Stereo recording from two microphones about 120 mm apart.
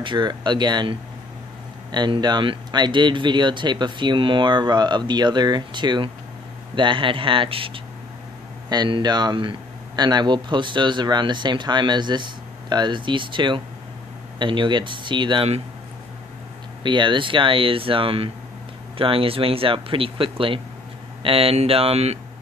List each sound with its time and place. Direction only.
0.0 s speech: 40° right (ahead or behind)
8.6 s speech: 35° right (ahead or behind)
16.8 s speech: 40° right (ahead or behind); by 22.2 s 60° right (ahead or behind)